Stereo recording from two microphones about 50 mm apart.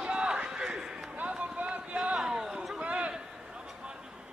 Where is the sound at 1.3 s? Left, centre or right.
Right.